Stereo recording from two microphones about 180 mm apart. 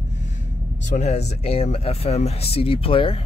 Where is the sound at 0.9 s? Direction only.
40° left (ahead or behind).